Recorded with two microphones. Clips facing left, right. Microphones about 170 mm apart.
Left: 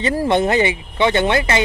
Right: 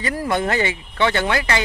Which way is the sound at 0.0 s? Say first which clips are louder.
Left 5 dB; 25° left (ahead or behind).